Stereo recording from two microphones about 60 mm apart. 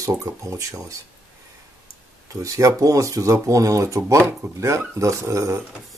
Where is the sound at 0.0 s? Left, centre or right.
Right.